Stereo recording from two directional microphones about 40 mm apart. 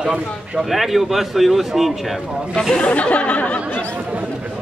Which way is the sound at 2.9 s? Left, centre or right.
Left.